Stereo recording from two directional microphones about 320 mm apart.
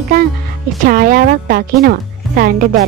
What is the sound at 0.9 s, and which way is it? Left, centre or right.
Speech, right.